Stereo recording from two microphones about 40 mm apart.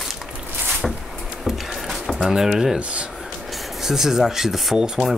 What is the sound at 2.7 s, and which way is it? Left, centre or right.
Speech, right.